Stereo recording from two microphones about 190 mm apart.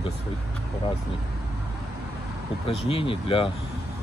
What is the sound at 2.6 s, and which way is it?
Speech, 30° left (ahead or behind).